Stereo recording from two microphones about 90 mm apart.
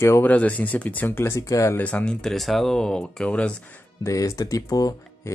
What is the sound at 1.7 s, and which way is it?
Speech, 15° left (ahead or behind).